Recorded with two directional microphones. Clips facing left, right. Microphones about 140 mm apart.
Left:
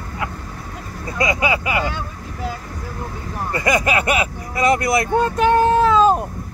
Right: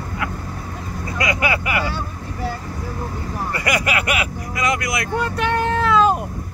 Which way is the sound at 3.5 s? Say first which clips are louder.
Left 4 dB; 25° left (ahead or behind).